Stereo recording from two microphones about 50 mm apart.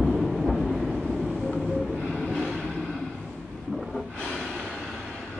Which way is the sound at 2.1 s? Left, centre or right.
Centre.